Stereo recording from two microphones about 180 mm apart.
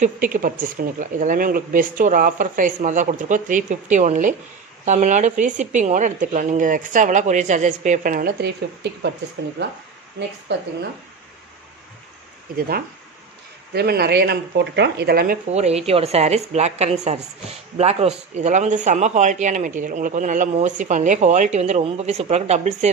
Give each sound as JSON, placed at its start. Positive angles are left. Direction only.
{"t": 0.0, "sound": "speech", "side_deg": -50}
{"t": 12.5, "sound": "speech", "side_deg": -55}
{"t": 15.5, "sound": "a woman's voice", "side_deg": -35}